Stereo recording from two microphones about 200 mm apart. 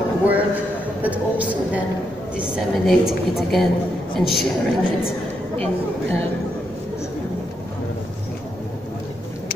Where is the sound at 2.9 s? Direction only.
Centre (ahead or behind).